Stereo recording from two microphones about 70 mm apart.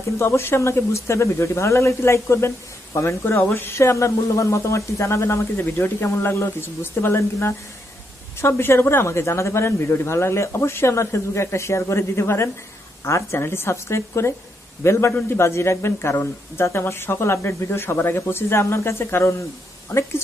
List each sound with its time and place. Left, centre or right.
0.2 s speech: left
5.8 s speech: left